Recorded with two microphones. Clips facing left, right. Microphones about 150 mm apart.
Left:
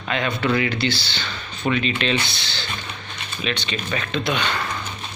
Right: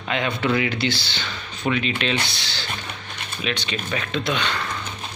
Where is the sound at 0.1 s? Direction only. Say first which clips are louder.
Left 1 dB; 15° right (ahead or behind).